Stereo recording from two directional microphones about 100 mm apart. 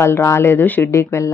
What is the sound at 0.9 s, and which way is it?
Speech, 30° left (ahead or behind).